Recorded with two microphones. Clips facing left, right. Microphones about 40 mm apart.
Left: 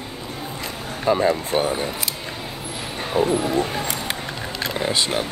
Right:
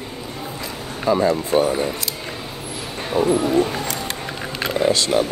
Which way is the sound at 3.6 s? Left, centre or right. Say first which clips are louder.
Right 3 dB; centre.